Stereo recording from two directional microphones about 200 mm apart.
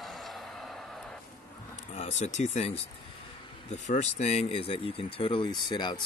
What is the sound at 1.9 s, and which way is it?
Speech, 35° left (ahead or behind).